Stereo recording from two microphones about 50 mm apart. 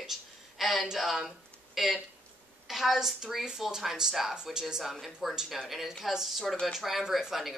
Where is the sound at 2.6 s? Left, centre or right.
Centre.